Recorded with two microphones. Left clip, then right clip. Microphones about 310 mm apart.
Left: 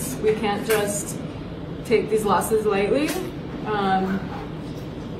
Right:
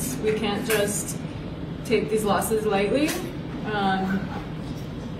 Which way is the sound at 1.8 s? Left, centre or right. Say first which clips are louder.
Left 3 dB; centre.